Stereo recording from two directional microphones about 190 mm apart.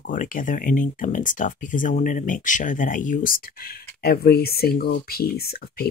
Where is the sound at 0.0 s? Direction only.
45° left (ahead or behind).